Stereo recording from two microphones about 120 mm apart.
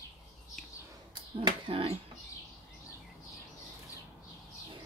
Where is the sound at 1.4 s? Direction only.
50° right (ahead or behind).